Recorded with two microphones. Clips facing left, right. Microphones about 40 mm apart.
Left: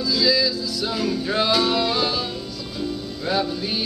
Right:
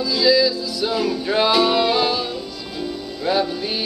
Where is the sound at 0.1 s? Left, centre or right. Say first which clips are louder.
Right 4 dB; centre.